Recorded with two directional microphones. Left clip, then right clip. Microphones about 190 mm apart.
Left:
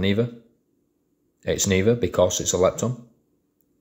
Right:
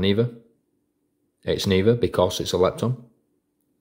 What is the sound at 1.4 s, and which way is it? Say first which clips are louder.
Speech: right 1 dB; 20° right (ahead or behind).